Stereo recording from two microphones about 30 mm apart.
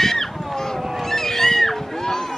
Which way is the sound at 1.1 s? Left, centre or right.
Centre.